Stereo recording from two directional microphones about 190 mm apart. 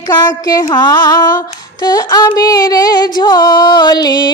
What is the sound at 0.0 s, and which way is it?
Music, 20° left (ahead or behind).